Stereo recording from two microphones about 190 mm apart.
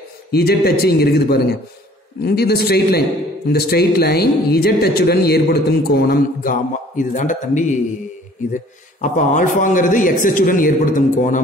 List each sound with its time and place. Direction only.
0.3 s speech: 55° left (ahead or behind)
9.0 s a man's voice: 40° left (ahead or behind)